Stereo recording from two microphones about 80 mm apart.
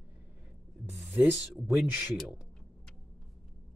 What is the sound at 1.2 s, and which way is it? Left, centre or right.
Speech, right.